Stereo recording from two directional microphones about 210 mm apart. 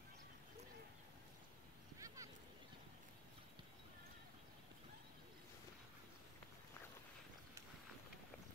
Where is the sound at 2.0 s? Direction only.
15° right (ahead or behind).